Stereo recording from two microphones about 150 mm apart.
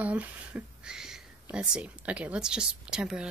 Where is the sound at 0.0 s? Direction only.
10° right (ahead or behind).